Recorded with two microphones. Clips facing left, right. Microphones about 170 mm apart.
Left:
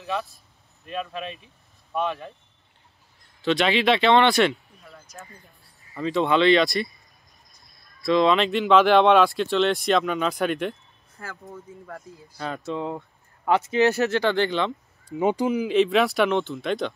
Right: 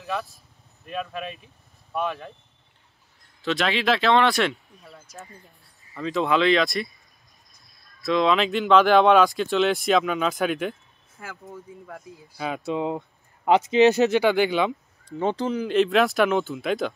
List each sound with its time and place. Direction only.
0.0 s speech: centre (ahead or behind)
3.4 s speech: centre (ahead or behind)
5.9 s speech: centre (ahead or behind)
8.0 s speech: centre (ahead or behind)
15.0 s speech: 10° left (ahead or behind)
15.6 s speech: centre (ahead or behind)